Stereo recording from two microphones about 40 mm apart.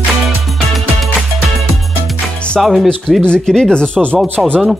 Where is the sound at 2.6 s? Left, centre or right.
Centre.